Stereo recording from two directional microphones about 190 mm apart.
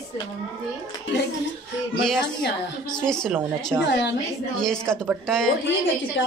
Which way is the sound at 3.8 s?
65° left (ahead or behind).